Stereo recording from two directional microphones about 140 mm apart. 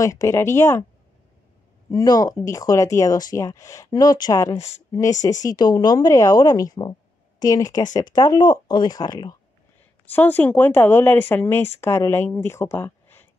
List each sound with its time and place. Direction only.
0.0 s speech: 25° left (ahead or behind)
1.9 s speech: 25° left (ahead or behind)
4.6 s a woman's voice: 50° left (ahead or behind)
5.4 s speech: 30° left (ahead or behind)
10.0 s speech: 15° left (ahead or behind)